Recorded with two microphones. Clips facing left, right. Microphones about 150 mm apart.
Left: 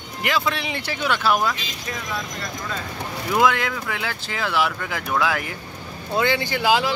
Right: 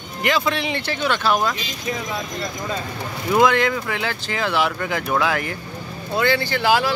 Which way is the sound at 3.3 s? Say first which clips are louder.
Right 3 dB; 5° left (ahead or behind).